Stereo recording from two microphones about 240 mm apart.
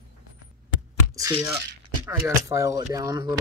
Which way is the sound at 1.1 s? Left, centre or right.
Centre.